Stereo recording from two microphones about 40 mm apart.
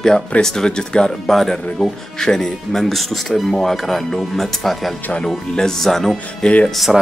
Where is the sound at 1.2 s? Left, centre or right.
Centre.